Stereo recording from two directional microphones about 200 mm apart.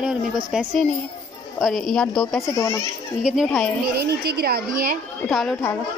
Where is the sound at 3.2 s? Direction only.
Centre (ahead or behind).